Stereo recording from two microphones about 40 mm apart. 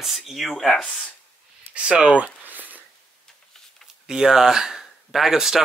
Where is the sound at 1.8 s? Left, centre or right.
Centre.